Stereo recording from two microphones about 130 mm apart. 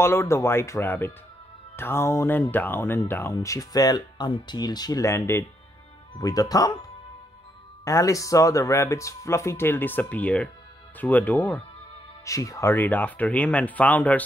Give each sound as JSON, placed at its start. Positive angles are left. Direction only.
{"t": 0.0, "sound": "speech", "side_deg": 20}
{"t": 7.8, "sound": "speech", "side_deg": 25}
{"t": 12.3, "sound": "speech", "side_deg": 25}